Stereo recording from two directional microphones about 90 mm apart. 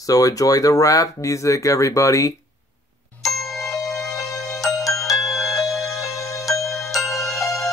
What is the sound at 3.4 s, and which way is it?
Music, 5° left (ahead or behind).